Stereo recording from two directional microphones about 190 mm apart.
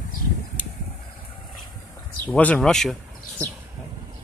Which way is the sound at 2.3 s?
10° left (ahead or behind).